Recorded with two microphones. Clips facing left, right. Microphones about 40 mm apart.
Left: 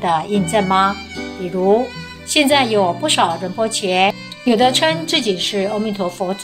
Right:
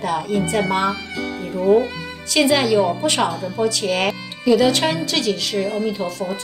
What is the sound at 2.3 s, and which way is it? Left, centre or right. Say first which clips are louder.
Speech: left 2 dB; left.